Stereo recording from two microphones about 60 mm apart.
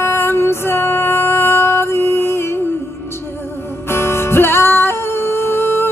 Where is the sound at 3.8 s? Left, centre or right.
Left.